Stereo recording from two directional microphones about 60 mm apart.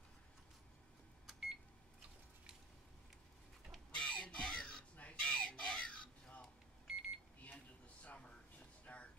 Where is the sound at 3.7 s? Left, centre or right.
Centre.